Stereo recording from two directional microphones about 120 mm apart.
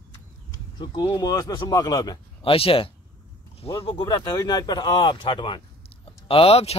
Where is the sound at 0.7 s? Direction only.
40° left (ahead or behind).